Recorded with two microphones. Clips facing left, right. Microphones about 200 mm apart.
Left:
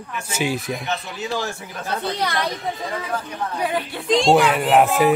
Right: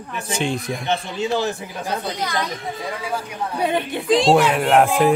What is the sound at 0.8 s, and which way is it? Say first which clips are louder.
Speech: right 4 dB; 25° right (ahead or behind).